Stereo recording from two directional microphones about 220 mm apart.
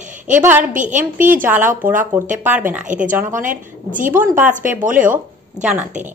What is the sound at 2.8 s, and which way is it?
A woman's voice, 35° right (ahead or behind).